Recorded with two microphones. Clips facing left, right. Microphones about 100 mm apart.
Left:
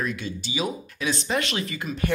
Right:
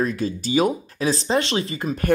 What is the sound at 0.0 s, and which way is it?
Speech, 35° right (ahead or behind).